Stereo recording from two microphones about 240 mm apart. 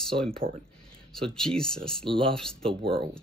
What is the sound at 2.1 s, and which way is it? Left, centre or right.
Speech, right.